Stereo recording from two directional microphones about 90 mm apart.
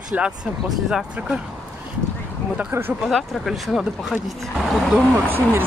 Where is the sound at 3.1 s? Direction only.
Centre (ahead or behind).